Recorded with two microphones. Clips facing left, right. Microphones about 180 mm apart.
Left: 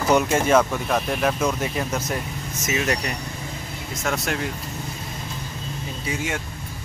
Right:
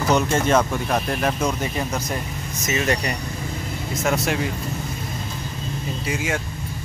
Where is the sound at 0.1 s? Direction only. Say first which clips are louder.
Left 1 dB; 10° left (ahead or behind).